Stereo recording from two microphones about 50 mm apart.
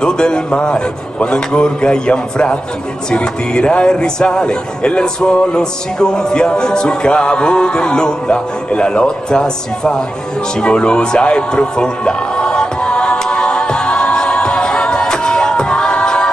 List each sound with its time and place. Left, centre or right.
0.0 s a man's voice: centre
10.6 s music: centre